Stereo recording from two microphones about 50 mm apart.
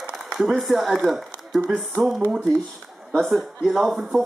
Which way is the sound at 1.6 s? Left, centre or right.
Centre.